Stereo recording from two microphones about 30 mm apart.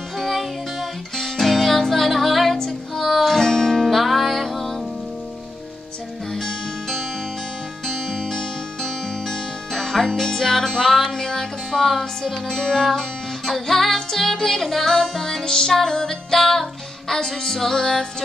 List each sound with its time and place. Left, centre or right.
0.2 s music: centre
3.8 s music: centre
6.3 s music: centre
17.7 s music: left